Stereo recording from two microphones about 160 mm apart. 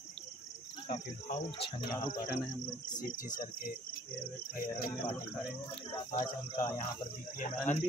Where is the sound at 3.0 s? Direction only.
60° left (ahead or behind).